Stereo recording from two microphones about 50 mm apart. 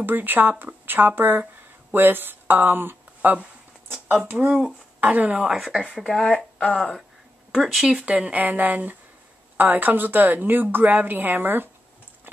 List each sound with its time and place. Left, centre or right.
0.0 s speech: right
3.2 s a woman's voice: right
5.6 s speech: centre
6.6 s speech: centre
7.5 s speech: centre
8.0 s a woman's voice: right